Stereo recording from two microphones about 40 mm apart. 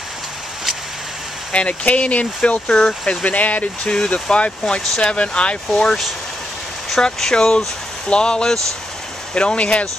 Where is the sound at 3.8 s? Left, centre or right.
Left.